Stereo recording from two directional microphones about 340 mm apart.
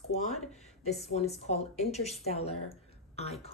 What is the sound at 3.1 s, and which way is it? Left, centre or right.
Speech, centre.